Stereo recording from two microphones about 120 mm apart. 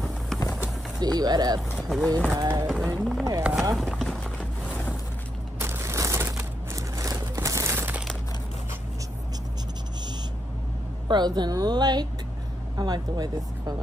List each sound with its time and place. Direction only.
0.4 s vehicle: 30° left (ahead or behind)
1.0 s speech: 35° right (ahead or behind)
1.9 s speech: 5° left (ahead or behind)
2.3 s speech: 25° right (ahead or behind)
2.6 s speech: 5° left (ahead or behind)
3.0 s a sound: centre (ahead or behind)
3.7 s run: centre (ahead or behind)
5.6 s a sound: 20° right (ahead or behind)
11.1 s speech: 35° right (ahead or behind)